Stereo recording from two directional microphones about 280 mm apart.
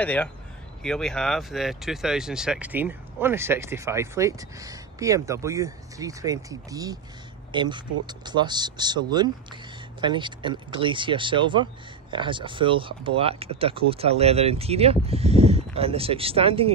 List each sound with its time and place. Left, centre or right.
0.0 s speech: centre